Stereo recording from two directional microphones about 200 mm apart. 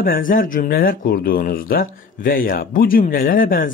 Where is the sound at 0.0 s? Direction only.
45° left (ahead or behind).